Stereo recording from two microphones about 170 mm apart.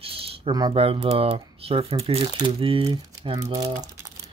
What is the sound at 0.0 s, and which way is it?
Speech, 35° right (ahead or behind).